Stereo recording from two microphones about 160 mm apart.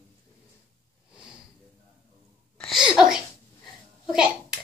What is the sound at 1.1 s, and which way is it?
Sniff, 5° right (ahead or behind).